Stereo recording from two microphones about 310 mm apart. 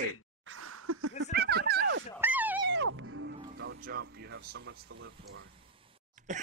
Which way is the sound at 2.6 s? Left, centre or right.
Right.